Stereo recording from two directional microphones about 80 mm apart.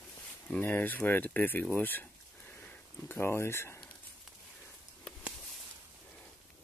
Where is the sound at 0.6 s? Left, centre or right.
Left.